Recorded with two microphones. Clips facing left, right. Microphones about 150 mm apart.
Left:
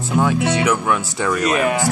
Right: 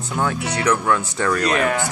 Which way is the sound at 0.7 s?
10° left (ahead or behind).